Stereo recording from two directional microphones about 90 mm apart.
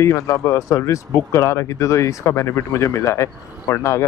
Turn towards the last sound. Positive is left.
turn(degrees=35)  # may be behind; listen again after turning